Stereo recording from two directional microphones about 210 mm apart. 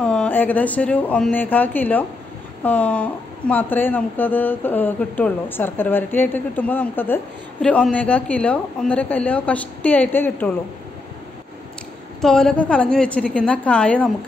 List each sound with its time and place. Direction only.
0.0 s speech: 5° left (ahead or behind)
12.2 s a woman's voice: centre (ahead or behind)